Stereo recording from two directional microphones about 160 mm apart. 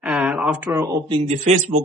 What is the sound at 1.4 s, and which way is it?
Speech, 45° right (ahead or behind).